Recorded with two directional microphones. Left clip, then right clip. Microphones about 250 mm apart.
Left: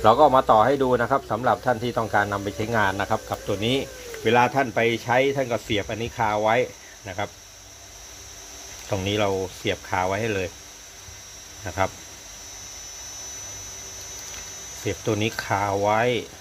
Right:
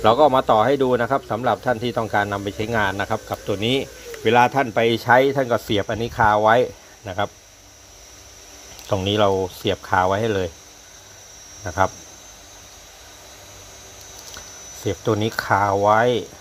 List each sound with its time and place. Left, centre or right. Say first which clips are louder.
0.0 s speech: right 1 dB; centre
8.8 s speech: right 5 dB; right
11.6 s speech: right 5 dB; centre
14.9 s speech: right 3 dB; centre